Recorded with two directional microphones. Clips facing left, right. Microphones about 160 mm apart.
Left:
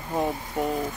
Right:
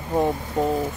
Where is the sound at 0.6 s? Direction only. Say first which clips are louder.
Right 4 dB; 25° right (ahead or behind).